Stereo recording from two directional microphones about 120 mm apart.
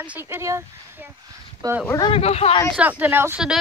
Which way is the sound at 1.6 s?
30° right (ahead or behind).